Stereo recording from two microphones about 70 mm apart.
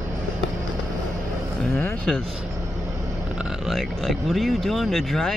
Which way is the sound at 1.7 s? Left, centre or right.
Left.